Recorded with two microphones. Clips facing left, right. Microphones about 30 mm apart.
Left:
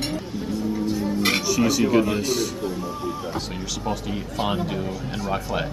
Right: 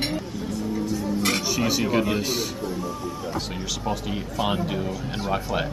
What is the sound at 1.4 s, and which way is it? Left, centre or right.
Music, centre.